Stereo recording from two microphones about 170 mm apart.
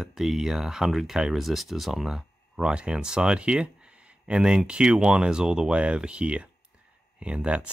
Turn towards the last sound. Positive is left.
turn(degrees=-5)  # may be behind; listen again after turning